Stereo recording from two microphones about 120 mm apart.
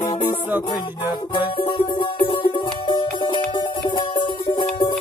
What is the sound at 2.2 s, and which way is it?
Music, 45° left (ahead or behind).